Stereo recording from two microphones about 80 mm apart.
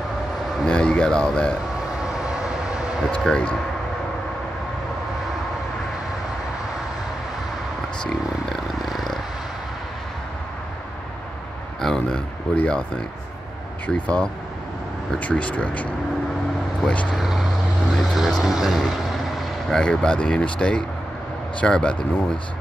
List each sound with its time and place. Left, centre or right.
0.7 s speech: centre
2.0 s vehicle: centre
3.3 s speech: centre
8.1 s a sound: centre
11.8 s speech: centre
17.1 s vehicle: centre
17.9 s speech: centre
19.8 s speech: centre